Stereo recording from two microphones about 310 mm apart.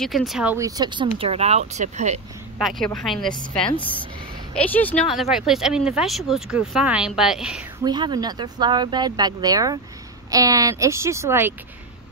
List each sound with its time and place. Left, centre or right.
0.0 s speech: centre; by 2.1 s right
2.6 s speech: centre
4.6 s speech: centre
7.8 s speech: centre